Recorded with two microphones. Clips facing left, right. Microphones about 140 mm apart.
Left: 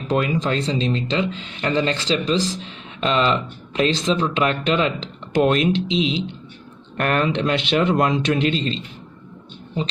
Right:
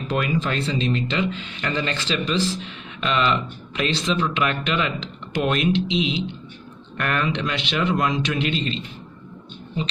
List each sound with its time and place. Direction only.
0.2 s speech: 30° left (ahead or behind)